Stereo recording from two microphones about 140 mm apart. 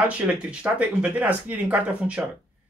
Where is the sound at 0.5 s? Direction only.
10° right (ahead or behind).